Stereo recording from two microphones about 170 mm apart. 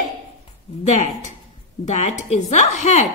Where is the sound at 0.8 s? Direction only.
45° left (ahead or behind).